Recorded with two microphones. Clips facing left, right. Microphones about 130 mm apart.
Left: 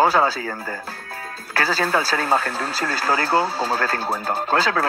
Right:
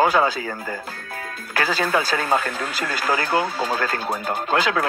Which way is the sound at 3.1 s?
30° left (ahead or behind).